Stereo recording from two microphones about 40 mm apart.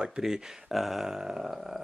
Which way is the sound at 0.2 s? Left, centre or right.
Centre.